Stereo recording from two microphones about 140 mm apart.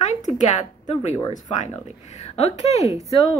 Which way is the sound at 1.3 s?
60° left (ahead or behind).